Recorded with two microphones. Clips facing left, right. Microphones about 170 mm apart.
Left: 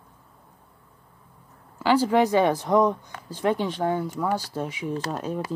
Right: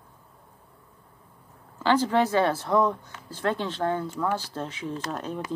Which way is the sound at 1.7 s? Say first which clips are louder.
Left 2 dB; 10° left (ahead or behind).